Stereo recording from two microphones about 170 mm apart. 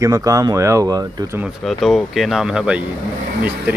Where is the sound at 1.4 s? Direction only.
Centre (ahead or behind).